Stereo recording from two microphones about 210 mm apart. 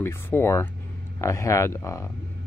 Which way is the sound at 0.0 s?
10° left (ahead or behind).